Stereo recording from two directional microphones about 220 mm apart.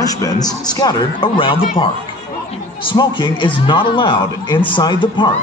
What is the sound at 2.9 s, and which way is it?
Speech, 20° left (ahead or behind).